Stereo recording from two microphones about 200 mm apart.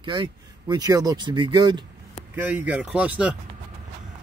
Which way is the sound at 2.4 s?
5° right (ahead or behind).